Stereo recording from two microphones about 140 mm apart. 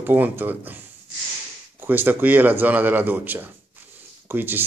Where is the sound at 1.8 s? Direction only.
15° right (ahead or behind).